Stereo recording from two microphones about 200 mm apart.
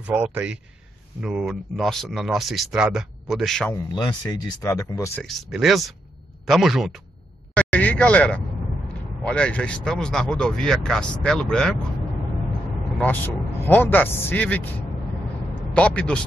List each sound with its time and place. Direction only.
0.0 s a man's voice: 5° right (ahead or behind)
3.7 s speech: 20° left (ahead or behind)
5.2 s speech: centre (ahead or behind)
7.5 s a sound: 5° left (ahead or behind)
9.2 s speech: 5° left (ahead or behind)
12.9 s speech: 10° left (ahead or behind)
15.7 s speech: 5° left (ahead or behind)